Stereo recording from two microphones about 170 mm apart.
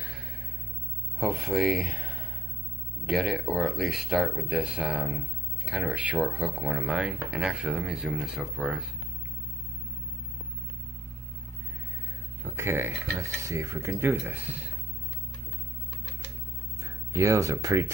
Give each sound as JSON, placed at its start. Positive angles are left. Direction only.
{"t": 0.0, "sound": "music", "side_deg": -5}
{"t": 1.2, "sound": "speech", "side_deg": 0}
{"t": 12.4, "sound": "speech", "side_deg": -15}
{"t": 16.8, "sound": "speech", "side_deg": -15}